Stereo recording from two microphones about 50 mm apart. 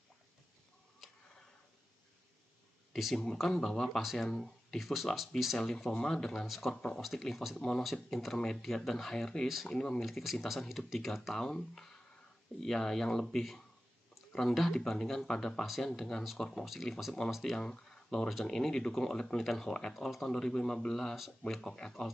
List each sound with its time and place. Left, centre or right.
2.9 s a sound: centre
3.3 s speech: centre
6.7 s speech: centre
8.4 s speech: centre
10.0 s speech: centre
11.3 s speech: centre
15.6 s speech: centre
17.6 s speech: centre